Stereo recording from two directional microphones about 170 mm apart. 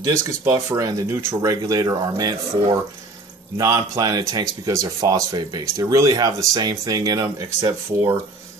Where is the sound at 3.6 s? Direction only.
20° right (ahead or behind).